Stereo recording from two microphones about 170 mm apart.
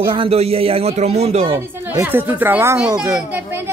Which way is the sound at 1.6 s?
15° right (ahead or behind).